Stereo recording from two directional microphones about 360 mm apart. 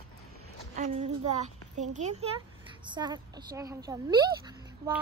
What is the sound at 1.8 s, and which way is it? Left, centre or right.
A woman's voice, centre.